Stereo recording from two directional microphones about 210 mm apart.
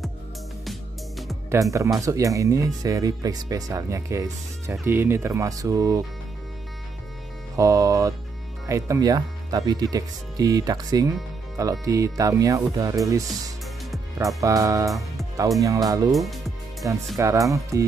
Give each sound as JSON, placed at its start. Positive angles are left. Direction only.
{"t": 0.7, "sound": "music", "side_deg": 0}
{"t": 1.5, "sound": "speech", "side_deg": -15}
{"t": 7.5, "sound": "speech", "side_deg": -15}
{"t": 16.1, "sound": "speech", "side_deg": 0}
{"t": 16.8, "sound": "speech", "side_deg": -15}